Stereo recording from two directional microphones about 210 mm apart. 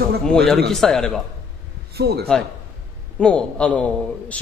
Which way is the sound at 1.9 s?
50° right (ahead or behind).